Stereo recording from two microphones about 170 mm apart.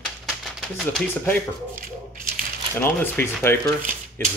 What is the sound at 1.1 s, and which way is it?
Speech, 10° left (ahead or behind).